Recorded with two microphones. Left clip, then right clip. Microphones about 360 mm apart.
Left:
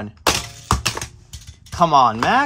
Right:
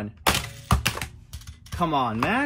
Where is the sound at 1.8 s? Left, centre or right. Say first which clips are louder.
Left 11 dB; centre.